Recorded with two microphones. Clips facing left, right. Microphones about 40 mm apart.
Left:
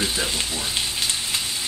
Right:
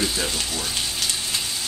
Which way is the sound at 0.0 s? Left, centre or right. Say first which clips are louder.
Even; left.